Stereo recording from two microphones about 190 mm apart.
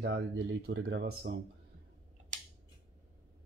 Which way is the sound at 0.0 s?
65° right (ahead or behind).